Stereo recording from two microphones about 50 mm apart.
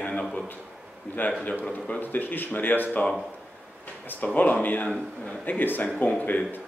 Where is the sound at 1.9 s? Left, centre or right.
Left.